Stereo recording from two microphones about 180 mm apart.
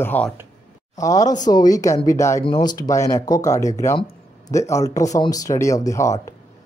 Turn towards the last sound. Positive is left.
turn(degrees=15)  # may be behind; listen again after turning